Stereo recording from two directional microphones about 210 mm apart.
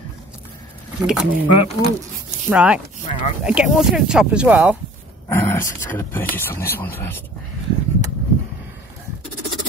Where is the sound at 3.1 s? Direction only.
30° left (ahead or behind).